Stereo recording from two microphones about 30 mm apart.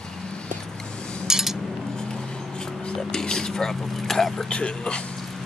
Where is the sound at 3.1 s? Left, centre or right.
Left.